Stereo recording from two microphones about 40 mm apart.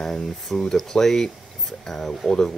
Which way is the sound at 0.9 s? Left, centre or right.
Centre.